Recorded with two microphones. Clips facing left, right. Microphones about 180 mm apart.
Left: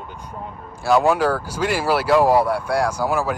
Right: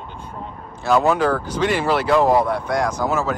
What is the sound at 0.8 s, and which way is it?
Speech, 10° left (ahead or behind).